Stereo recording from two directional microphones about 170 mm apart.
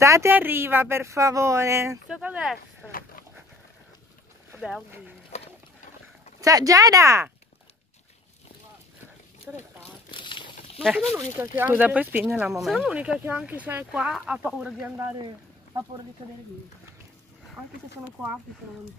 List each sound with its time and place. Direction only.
0.0 s speech: 15° right (ahead or behind)
2.0 s speech: 5° right (ahead or behind)
2.9 s dog: 55° left (ahead or behind)
4.6 s speech: centre (ahead or behind)
6.4 s speech: 20° right (ahead or behind)
9.5 s speech: 10° right (ahead or behind)
10.1 s a sound: 30° left (ahead or behind)
10.8 s speech: 5° right (ahead or behind)